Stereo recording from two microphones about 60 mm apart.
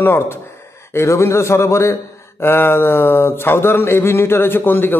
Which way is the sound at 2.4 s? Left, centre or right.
Left.